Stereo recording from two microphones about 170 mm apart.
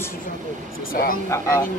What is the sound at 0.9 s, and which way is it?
Speech, 60° left (ahead or behind).